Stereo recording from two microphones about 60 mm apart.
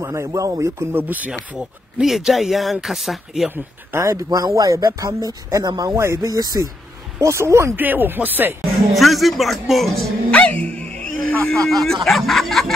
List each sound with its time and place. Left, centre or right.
0.0 s speech: right
0.9 s speech: right
2.0 s speech: centre
4.0 s speech: right
4.6 s speech: right
5.9 s speech: right
6.2 s speech: right
7.2 s speech: right
7.7 s speech: right
8.5 s speech: centre
10.3 s speech: left; by 12.7 s centre